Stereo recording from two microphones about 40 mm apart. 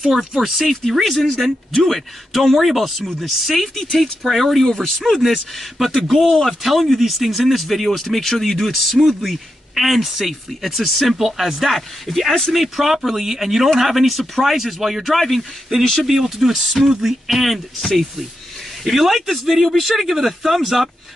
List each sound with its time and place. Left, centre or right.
0.0 s speech: centre
1.3 s speech: centre
6.1 s speech: centre
6.4 s speech: centre
16.1 s speech: centre